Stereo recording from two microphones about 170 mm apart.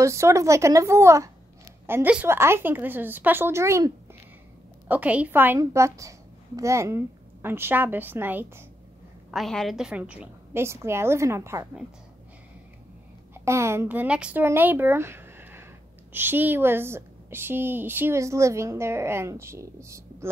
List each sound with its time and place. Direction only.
0.0 s a woman's voice: 15° right (ahead or behind)
9.3 s a woman's voice: centre (ahead or behind); by 11.6 s 15° right (ahead or behind)
13.3 s a woman's voice: 15° right (ahead or behind)